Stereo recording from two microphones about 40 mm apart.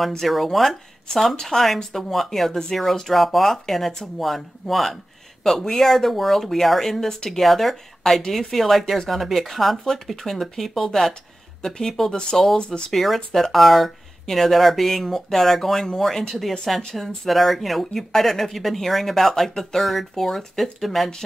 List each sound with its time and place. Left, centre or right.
0.2 s speech: centre
1.3 s speech: centre
12.5 s speech: left
12.9 s speech: centre